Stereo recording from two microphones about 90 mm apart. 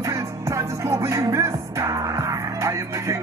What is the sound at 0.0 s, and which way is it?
Music, 35° right (ahead or behind).